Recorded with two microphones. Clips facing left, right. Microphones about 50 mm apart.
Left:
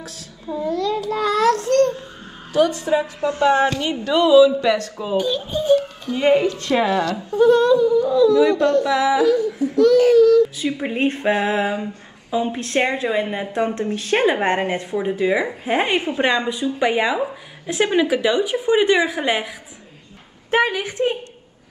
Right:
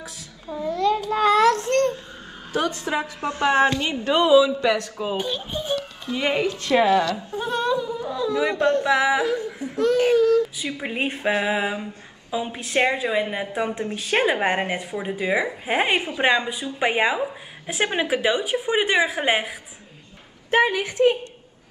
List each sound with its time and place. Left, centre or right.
0.7 s a sound: right
2.5 s a woman's voice: right
6.6 s a woman's voice: centre
7.1 s a sound: left
7.3 s speech: right
10.8 s speech: centre
11.4 s a sound: centre
12.5 s a woman's voice: centre; by 19.4 s right
20.5 s a woman's voice: left